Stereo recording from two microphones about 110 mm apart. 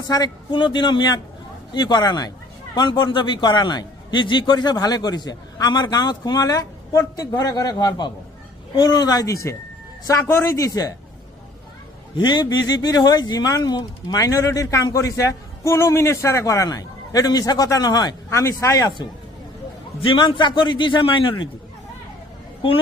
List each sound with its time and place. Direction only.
0.0 s a man's voice: 35° left (ahead or behind)
12.2 s a man's voice: 40° left (ahead or behind)
18.3 s speech: 25° left (ahead or behind)
20.0 s a man's voice: 50° left (ahead or behind)